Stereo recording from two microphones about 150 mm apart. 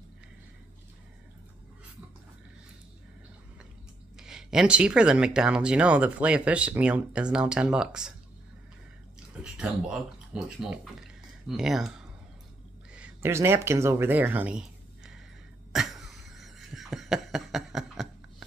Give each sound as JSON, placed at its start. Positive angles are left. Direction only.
{"t": 4.2, "sound": "speech", "side_deg": -5}
{"t": 9.4, "sound": "speech", "side_deg": -5}
{"t": 12.9, "sound": "speech", "side_deg": -10}
{"t": 15.7, "sound": "a sound", "side_deg": 0}